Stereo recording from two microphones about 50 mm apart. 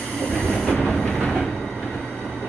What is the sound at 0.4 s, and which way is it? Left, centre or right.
Train, centre.